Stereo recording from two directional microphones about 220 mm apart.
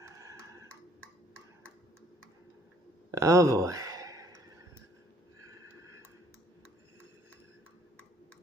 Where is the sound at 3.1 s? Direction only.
15° right (ahead or behind).